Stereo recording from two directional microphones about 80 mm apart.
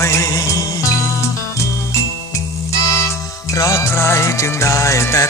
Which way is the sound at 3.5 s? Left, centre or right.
Left.